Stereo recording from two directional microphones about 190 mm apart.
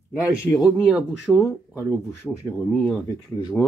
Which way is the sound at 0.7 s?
5° right (ahead or behind).